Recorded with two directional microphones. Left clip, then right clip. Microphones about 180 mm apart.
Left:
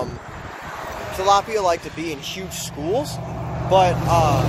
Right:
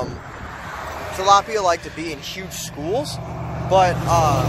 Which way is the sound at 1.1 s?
10° left (ahead or behind).